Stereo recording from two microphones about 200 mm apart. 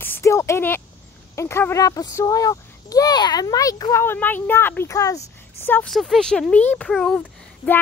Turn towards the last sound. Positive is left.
turn(degrees=5)  # may be behind; listen again after turning